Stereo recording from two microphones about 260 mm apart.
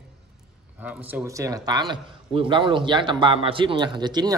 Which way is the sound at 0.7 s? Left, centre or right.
Centre.